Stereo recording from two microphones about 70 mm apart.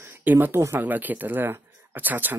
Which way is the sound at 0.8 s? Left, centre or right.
Right.